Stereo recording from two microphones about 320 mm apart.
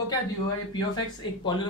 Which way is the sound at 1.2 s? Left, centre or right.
Centre.